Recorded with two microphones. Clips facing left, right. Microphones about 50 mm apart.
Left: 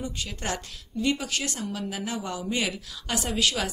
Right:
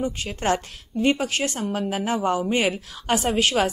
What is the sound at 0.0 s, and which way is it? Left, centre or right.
Speech, right.